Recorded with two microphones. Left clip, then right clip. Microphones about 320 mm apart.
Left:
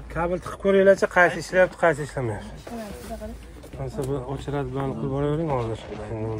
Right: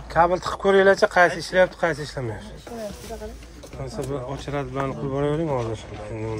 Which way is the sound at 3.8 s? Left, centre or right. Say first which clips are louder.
Even; centre.